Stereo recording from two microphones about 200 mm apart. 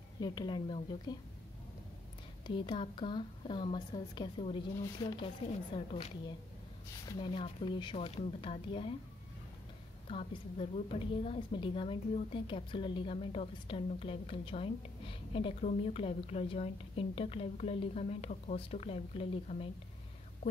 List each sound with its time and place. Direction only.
0.2 s a woman's voice: 20° left (ahead or behind)
2.4 s a woman's voice: 25° left (ahead or behind)
10.0 s a woman's voice: 30° left (ahead or behind)